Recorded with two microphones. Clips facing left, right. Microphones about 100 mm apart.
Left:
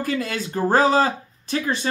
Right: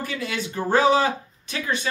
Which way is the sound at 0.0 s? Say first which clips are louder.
Left 4 dB; 40° left (ahead or behind).